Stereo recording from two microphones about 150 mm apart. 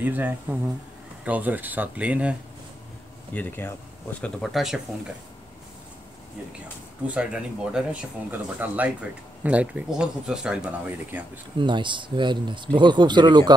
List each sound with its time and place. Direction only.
0.0 s speech: 10° right (ahead or behind)
3.3 s speech: 15° left (ahead or behind)
7.2 s speech: 5° right (ahead or behind)
11.5 s speech: 30° right (ahead or behind)